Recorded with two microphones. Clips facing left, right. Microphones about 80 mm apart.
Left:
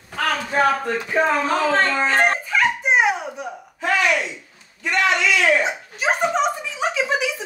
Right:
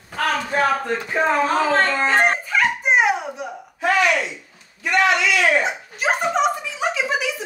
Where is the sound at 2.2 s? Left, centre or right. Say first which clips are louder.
Even; centre.